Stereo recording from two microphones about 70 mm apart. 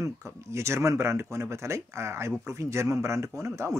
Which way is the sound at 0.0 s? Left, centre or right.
Right.